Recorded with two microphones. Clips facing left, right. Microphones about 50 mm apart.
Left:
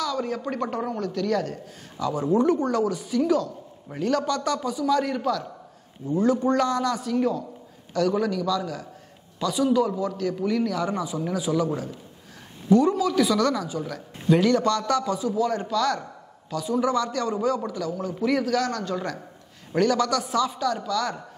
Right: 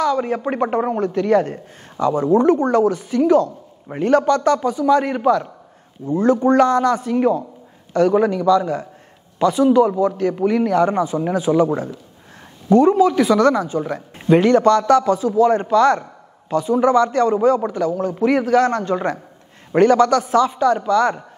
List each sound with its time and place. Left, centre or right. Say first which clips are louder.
0.0 s speech: right 8 dB; right
6.0 s speech: right 6 dB; right